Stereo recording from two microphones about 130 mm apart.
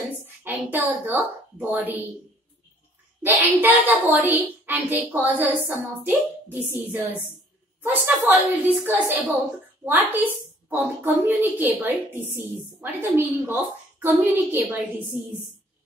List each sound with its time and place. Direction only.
0.2 s a woman's voice: 15° right (ahead or behind)
3.2 s a woman's voice: 15° right (ahead or behind)